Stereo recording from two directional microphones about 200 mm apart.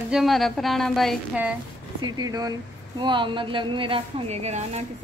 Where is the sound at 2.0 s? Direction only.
20° right (ahead or behind).